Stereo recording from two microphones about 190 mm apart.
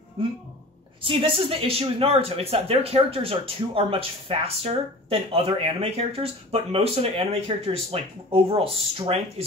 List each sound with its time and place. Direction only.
1.0 s speech: 30° right (ahead or behind)